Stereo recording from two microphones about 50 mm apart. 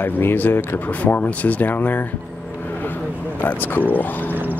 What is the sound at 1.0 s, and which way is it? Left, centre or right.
Speech, left.